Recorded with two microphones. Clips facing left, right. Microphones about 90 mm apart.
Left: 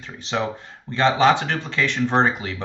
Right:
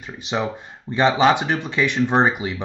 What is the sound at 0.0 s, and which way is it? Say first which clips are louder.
Speech: right 1 dB; 15° right (ahead or behind).